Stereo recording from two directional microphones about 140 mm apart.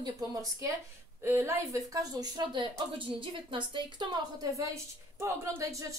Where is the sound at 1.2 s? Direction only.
15° right (ahead or behind).